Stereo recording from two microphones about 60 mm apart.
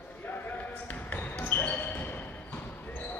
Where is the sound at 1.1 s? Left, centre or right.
Left.